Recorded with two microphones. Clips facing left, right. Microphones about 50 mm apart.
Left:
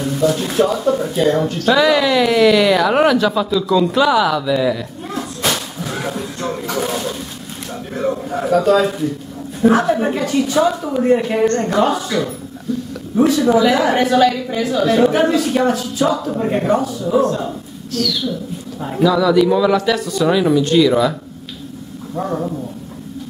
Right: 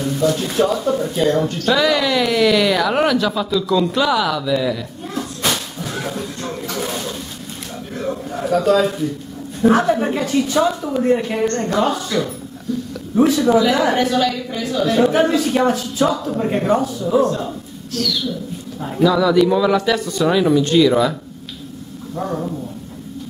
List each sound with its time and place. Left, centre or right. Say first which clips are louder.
0.0 s speech: left 1 dB; centre
7.9 s a sound: left 4 dB; centre
9.6 s a woman's voice: left 1 dB; centre
22.1 s speech: left 2 dB; centre